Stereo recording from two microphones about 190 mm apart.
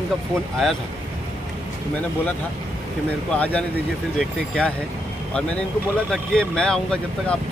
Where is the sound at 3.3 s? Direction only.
5° left (ahead or behind).